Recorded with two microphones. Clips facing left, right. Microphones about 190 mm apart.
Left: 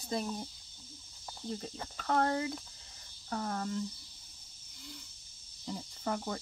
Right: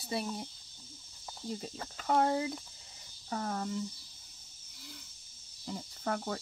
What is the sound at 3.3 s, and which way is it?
Speech, 5° right (ahead or behind).